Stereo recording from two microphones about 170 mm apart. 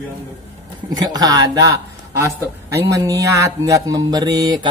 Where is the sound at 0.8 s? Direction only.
25° right (ahead or behind).